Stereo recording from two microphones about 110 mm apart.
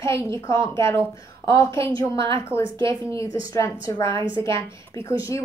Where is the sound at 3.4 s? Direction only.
35° left (ahead or behind).